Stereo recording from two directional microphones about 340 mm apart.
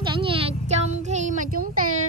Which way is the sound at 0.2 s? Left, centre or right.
Centre.